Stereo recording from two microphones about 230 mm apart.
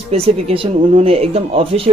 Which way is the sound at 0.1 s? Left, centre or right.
Right.